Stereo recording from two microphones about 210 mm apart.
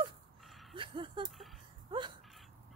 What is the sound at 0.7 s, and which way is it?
Speech, 25° right (ahead or behind).